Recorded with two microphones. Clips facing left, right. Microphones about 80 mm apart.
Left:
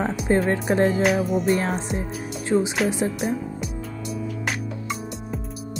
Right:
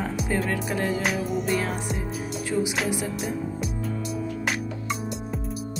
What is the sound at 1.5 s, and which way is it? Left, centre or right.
Speech, left.